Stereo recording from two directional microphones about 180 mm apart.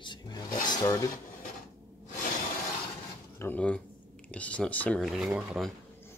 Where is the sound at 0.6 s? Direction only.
20° left (ahead or behind).